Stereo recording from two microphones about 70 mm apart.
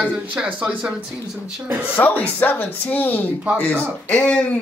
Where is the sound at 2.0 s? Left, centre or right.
Left.